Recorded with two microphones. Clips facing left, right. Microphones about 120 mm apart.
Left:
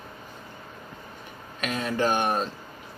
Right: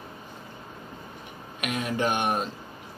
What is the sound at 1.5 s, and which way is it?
Speech, 10° right (ahead or behind).